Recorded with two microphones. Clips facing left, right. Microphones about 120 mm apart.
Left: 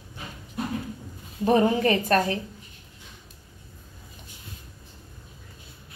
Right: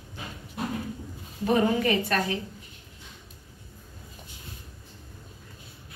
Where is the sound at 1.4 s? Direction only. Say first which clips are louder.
Left 3 dB; 35° left (ahead or behind).